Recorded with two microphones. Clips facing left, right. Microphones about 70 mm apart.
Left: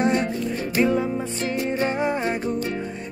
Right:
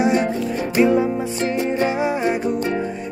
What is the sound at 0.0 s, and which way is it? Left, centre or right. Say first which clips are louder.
Music: right 3 dB; centre.